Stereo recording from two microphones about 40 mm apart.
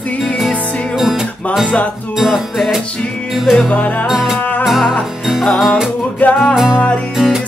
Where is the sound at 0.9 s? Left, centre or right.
Centre.